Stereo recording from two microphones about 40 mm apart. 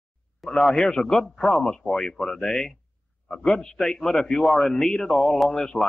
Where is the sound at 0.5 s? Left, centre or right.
Centre.